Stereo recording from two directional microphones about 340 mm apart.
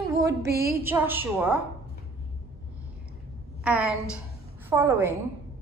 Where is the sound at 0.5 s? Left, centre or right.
Right.